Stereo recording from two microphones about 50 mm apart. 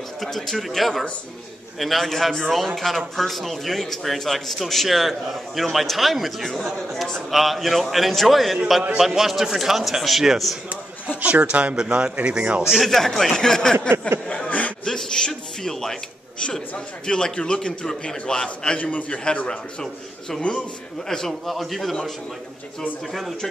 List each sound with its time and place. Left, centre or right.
0.2 s a man's voice: centre
11.1 s a man's voice: right
11.7 s a man's voice: centre
12.8 s a man's voice: centre
13.7 s a sound: right
14.2 s a sound: centre
16.7 s a man's voice: centre
18.8 s a man's voice: left; by 21.9 s centre